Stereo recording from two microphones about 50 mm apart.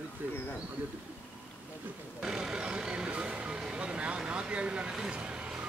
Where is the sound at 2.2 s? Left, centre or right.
Centre.